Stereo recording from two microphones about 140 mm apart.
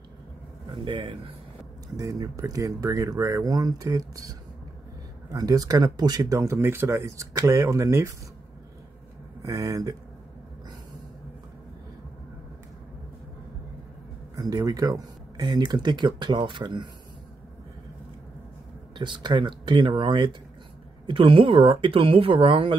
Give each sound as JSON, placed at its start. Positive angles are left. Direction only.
{"t": 0.7, "sound": "speech", "side_deg": -35}
{"t": 2.0, "sound": "speech", "side_deg": -25}
{"t": 9.4, "sound": "speech", "side_deg": -25}
{"t": 14.3, "sound": "speech", "side_deg": -25}
{"t": 18.9, "sound": "speech", "side_deg": -35}